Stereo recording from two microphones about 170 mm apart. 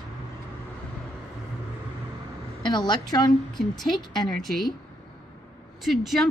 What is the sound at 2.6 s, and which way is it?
Speech, 25° left (ahead or behind).